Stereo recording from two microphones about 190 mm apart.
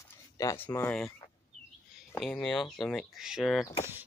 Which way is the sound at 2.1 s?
5° left (ahead or behind).